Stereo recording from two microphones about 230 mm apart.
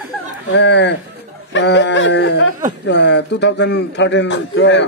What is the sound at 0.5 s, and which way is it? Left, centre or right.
A man's voice, left.